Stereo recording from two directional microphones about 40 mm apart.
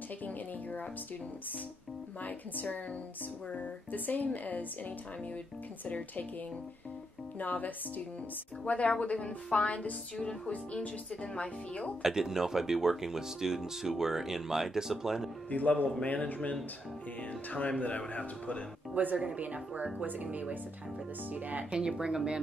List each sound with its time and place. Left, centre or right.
0.2 s speech: left
2.2 s speech: left
7.3 s speech: left
8.6 s a woman's voice: left
10.1 s a woman's voice: left
12.0 s speech: centre
15.5 s speech: left
19.2 s speech: right
21.6 s speech: centre